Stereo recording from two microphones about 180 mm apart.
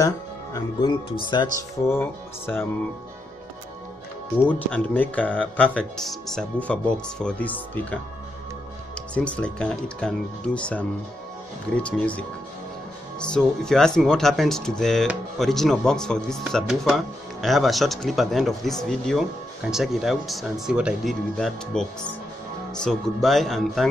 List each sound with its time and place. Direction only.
0.0 s speech: 20° left (ahead or behind)
1.9 s speech: 10° left (ahead or behind)
4.5 s speech: 10° left (ahead or behind)